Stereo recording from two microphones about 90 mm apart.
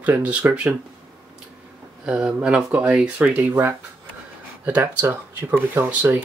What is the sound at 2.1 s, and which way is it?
Speech, 15° right (ahead or behind).